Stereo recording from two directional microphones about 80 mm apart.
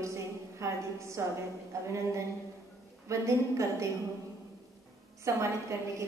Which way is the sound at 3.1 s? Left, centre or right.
Right.